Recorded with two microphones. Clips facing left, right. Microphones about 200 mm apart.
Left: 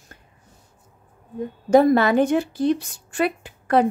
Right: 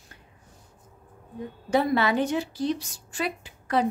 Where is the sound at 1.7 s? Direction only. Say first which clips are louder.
Left 8 dB; 45° left (ahead or behind).